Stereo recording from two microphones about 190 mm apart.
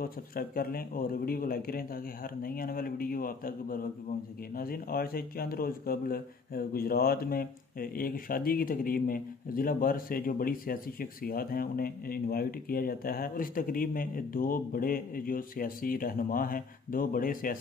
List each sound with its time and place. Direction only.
0.0 s speech: 50° left (ahead or behind)